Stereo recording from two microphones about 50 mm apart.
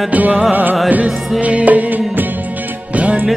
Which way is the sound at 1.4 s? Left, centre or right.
Right.